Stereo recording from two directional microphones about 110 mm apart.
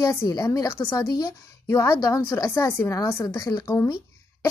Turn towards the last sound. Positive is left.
turn(degrees=30)  # may be behind; listen again after turning